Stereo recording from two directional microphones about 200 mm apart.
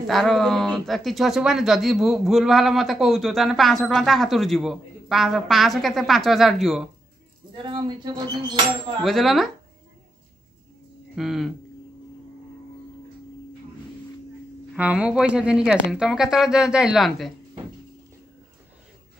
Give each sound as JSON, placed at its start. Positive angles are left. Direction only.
{"t": 0.0, "sound": "speech", "side_deg": 0}
{"t": 7.5, "sound": "speech", "side_deg": -20}
{"t": 9.0, "sound": "speech", "side_deg": 0}
{"t": 11.1, "sound": "speech", "side_deg": 0}
{"t": 14.8, "sound": "speech", "side_deg": -5}